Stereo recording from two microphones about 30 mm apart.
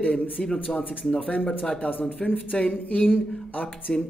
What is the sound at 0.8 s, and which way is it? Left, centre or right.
Speech, left.